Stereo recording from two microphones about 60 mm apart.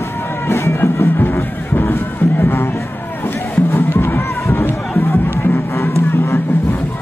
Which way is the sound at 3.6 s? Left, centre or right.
Left.